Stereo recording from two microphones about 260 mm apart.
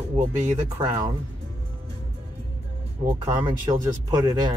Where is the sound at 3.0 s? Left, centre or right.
Centre.